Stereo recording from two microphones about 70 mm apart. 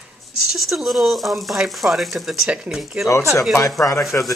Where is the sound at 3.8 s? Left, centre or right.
Left.